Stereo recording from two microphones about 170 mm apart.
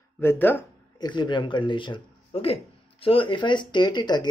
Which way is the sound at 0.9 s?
25° left (ahead or behind).